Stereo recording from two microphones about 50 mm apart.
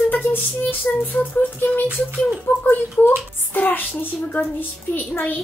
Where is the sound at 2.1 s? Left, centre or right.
Left.